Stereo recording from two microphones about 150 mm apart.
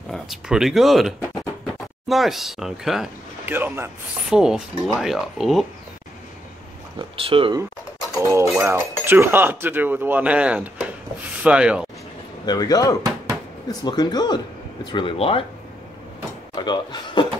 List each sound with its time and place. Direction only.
0.1 s speech: centre (ahead or behind)
3.4 s speech: 15° right (ahead or behind)
4.3 s speech: 5° right (ahead or behind)
7.0 s speech: 35° right (ahead or behind)
8.2 s speech: 20° right (ahead or behind)
12.4 s speech: 25° left (ahead or behind)
16.5 s speech: 30° left (ahead or behind)